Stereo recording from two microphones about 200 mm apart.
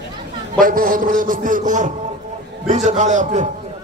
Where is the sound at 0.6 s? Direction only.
45° right (ahead or behind).